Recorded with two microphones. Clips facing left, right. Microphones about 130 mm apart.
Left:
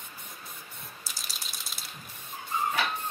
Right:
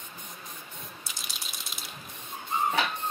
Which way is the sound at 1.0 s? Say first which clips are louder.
Right 1 dB; centre (ahead or behind).